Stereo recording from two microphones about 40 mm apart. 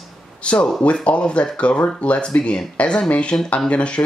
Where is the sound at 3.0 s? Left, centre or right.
Left.